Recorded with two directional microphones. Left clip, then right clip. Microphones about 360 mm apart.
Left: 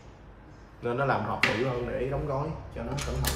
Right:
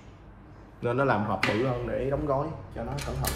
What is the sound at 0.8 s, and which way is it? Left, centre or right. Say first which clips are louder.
Speech: right 2 dB; right.